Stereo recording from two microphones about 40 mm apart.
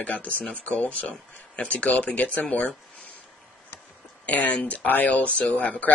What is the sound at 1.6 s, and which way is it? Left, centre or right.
Speech, left.